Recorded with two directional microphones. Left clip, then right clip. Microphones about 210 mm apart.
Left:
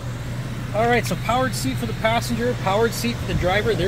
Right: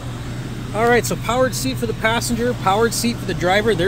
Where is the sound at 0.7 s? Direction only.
15° right (ahead or behind).